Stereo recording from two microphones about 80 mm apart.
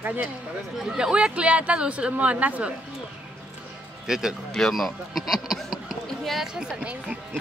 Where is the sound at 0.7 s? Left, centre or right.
Centre.